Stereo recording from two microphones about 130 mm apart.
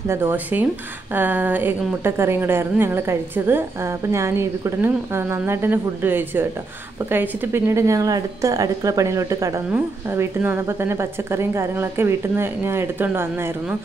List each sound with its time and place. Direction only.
0.1 s a woman's voice: 15° right (ahead or behind)